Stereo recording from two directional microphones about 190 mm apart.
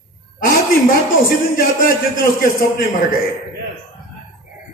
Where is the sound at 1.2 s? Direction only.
50° left (ahead or behind).